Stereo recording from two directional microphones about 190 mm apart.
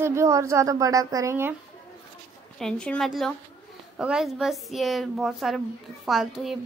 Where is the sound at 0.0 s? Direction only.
15° right (ahead or behind).